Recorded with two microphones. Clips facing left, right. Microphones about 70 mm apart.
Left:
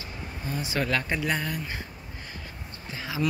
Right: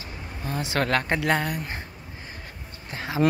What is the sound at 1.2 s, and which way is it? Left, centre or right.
Speech, right.